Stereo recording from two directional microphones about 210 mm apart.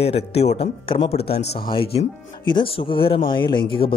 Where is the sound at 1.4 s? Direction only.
50° left (ahead or behind).